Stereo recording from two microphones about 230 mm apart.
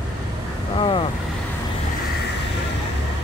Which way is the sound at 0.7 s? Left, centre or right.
Left.